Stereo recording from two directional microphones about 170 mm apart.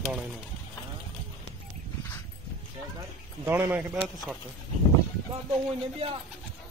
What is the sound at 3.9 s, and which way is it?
Speech, 5° right (ahead or behind).